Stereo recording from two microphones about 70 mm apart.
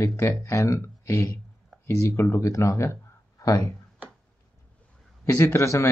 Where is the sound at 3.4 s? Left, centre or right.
Left.